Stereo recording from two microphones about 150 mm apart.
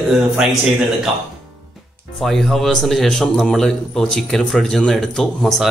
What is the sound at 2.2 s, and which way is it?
A man's voice, centre (ahead or behind).